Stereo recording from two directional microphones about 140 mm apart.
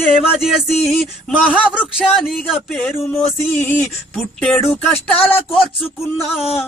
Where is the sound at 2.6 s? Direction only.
10° left (ahead or behind).